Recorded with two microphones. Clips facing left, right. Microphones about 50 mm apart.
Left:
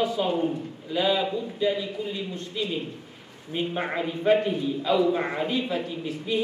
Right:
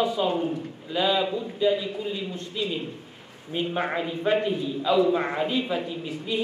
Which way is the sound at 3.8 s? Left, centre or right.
Centre.